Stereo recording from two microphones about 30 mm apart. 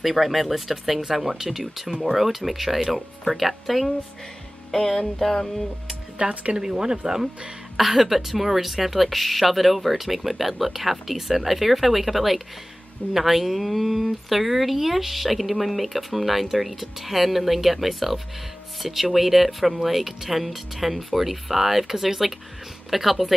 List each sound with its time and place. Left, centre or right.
0.0 s speech: centre
4.6 s music: centre
6.1 s speech: right
6.6 s speech: right
7.7 s speech: centre